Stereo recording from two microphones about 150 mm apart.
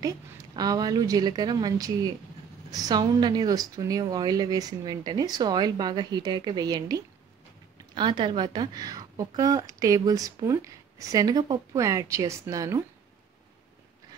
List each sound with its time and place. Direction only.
0.6 s a woman's voice: 25° right (ahead or behind)